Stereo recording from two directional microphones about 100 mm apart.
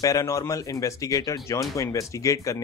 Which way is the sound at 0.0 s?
35° left (ahead or behind).